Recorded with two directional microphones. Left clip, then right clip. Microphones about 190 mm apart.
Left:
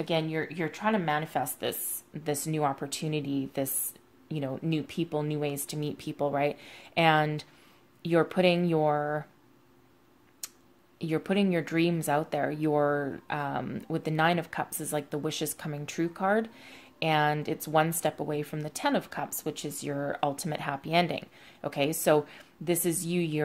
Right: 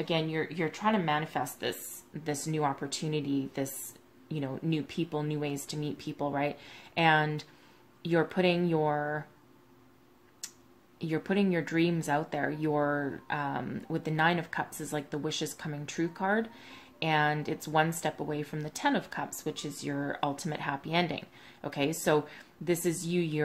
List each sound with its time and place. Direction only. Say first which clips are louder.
0.0 s speech: left 1 dB; 40° left (ahead or behind)
11.0 s speech: left 2 dB; 40° left (ahead or behind)